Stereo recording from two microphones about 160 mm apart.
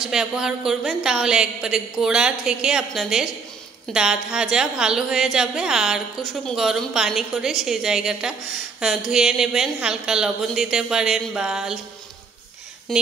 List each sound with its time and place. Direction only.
0.0 s a woman's voice: 5° right (ahead or behind)
12.9 s speech: centre (ahead or behind)